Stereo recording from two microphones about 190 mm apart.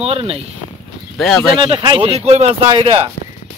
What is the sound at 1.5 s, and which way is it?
Speech, 25° right (ahead or behind).